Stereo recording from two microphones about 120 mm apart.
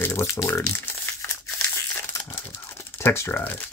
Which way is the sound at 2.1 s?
20° left (ahead or behind).